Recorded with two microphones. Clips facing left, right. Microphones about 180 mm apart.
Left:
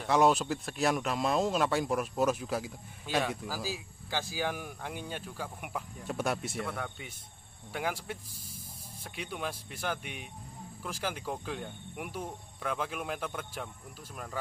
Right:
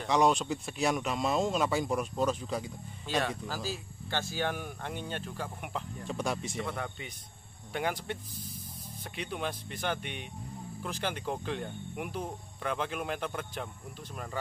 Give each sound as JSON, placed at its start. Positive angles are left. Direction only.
{"t": 0.0, "sound": "speech", "side_deg": 5}